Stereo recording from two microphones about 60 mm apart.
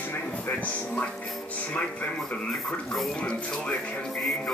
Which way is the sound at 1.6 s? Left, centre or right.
Left.